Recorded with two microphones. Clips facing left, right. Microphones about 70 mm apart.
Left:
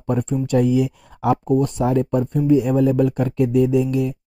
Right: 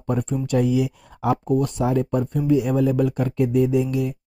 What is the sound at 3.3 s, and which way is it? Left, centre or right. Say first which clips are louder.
Speech: left 2 dB; left.